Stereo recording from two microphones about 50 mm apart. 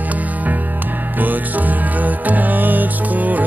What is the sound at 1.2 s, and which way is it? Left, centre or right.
Music, right.